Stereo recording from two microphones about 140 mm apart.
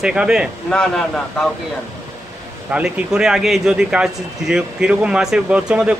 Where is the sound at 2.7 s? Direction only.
5° right (ahead or behind).